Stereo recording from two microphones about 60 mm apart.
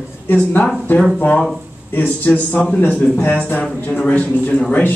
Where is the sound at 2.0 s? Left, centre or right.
Left.